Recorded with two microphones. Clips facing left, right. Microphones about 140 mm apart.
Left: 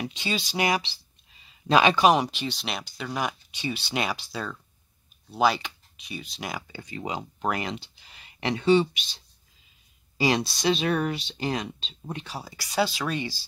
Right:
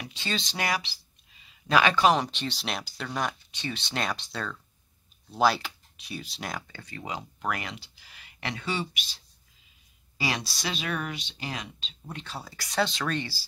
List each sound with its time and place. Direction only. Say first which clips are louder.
0.0 s speech: left 3 dB; 15° left (ahead or behind)
0.7 s speech: left 4 dB; 25° left (ahead or behind)
10.1 s speech: left 7 dB; 25° left (ahead or behind)
12.2 s speech: left 2 dB; 10° left (ahead or behind)